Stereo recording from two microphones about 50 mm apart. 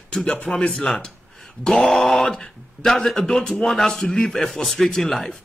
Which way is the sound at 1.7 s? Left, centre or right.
Centre.